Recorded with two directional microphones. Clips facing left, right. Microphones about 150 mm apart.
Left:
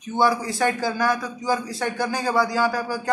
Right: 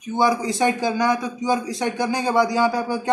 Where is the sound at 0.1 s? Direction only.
15° right (ahead or behind).